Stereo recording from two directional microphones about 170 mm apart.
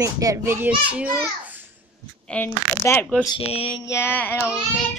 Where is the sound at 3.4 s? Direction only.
35° left (ahead or behind).